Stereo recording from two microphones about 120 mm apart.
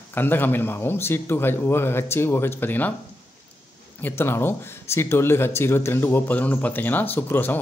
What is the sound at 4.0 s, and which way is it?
Speech, 15° left (ahead or behind).